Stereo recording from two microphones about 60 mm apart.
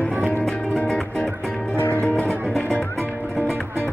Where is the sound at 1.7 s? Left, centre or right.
Left.